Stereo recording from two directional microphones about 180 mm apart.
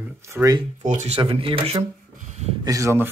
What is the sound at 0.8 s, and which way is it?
Speech, 40° right (ahead or behind).